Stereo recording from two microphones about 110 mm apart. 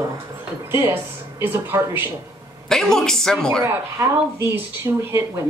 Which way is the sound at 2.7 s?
5° left (ahead or behind).